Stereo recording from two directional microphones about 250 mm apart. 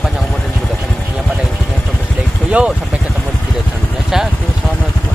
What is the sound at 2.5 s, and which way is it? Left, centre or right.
Speech, centre.